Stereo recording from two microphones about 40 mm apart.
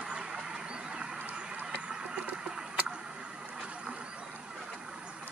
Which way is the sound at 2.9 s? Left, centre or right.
Right.